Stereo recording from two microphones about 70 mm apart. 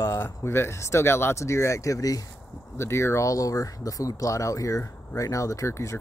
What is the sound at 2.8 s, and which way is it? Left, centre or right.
Speech, left.